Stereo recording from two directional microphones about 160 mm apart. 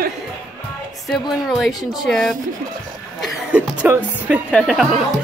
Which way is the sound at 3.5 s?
10° right (ahead or behind).